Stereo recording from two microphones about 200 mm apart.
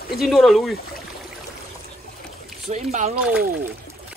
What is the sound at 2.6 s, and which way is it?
Speech, 35° right (ahead or behind).